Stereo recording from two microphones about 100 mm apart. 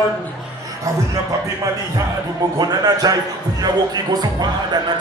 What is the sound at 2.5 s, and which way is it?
Speech, 40° right (ahead or behind).